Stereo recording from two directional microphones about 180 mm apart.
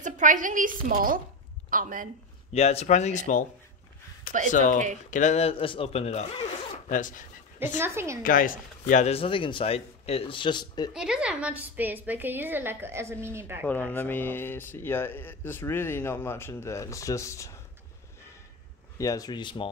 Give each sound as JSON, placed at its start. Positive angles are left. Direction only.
{"t": 0.0, "sound": "a woman's voice", "side_deg": -45}
{"t": 2.5, "sound": "speech", "side_deg": 35}
{"t": 4.5, "sound": "speech", "side_deg": 45}
{"t": 6.9, "sound": "speech", "side_deg": 45}
{"t": 7.8, "sound": "a woman's voice", "side_deg": -15}
{"t": 8.2, "sound": "speech", "side_deg": 50}
{"t": 10.9, "sound": "a woman's voice", "side_deg": -5}
{"t": 13.7, "sound": "speech", "side_deg": 10}
{"t": 18.9, "sound": "speech", "side_deg": 20}